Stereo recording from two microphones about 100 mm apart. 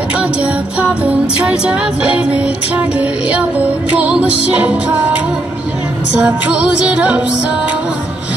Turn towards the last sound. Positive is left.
turn(degrees=-10)  # may be behind; listen again after turning